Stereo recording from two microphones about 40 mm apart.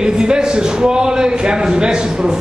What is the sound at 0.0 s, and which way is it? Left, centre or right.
A man's voice, centre.